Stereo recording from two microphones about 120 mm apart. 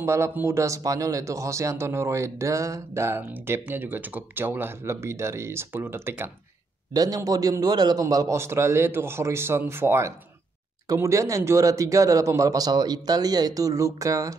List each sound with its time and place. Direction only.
0.0 s a man's voice: 20° right (ahead or behind)
6.9 s a man's voice: 30° right (ahead or behind)